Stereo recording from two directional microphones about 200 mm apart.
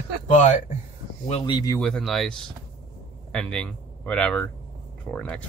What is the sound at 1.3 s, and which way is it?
Speech, 20° left (ahead or behind).